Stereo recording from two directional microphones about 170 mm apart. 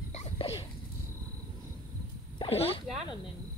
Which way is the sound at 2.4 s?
35° left (ahead or behind).